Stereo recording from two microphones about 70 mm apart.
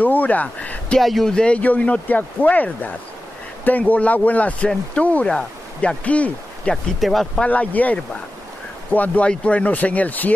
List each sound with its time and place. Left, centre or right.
0.0 s speech: left
0.9 s speech: centre
1.3 s speech: centre
6.7 s speech: centre
7.4 s speech: left